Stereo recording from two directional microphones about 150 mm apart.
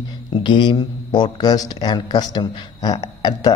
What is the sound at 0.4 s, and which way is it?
A man's voice, 30° left (ahead or behind).